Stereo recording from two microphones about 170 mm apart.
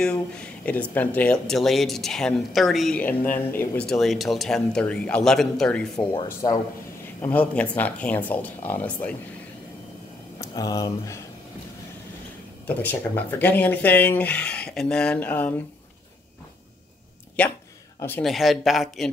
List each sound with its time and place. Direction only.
0.0 s speech: 5° left (ahead or behind)
6.2 s speech: 20° left (ahead or behind)
7.2 s speech: 10° left (ahead or behind)
10.4 s speech: 20° left (ahead or behind)
12.6 s speech: 10° left (ahead or behind)
17.4 s speech: 5° left (ahead or behind)
18.2 s speech: centre (ahead or behind)